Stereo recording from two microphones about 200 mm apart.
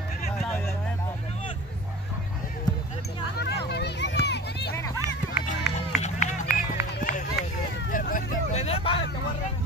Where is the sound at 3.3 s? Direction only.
55° left (ahead or behind).